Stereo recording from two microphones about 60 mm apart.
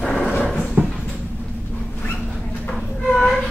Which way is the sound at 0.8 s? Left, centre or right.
Right.